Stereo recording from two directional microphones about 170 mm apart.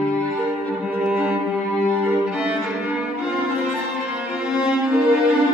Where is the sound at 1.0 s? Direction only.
5° right (ahead or behind).